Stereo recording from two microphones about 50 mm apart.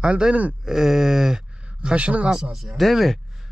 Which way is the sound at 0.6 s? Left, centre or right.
Centre.